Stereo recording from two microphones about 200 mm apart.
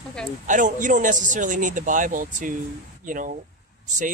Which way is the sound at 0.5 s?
40° right (ahead or behind).